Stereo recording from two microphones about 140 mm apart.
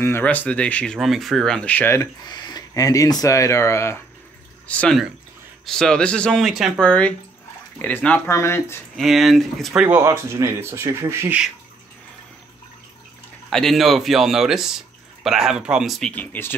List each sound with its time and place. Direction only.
0.0 s speech: 15° left (ahead or behind)
2.0 s speech: 30° left (ahead or behind)
4.6 s speech: 5° left (ahead or behind)
8.9 s speech: centre (ahead or behind)
9.8 s speech: 20° right (ahead or behind)
13.5 s speech: centre (ahead or behind)
16.1 s speech: 10° left (ahead or behind)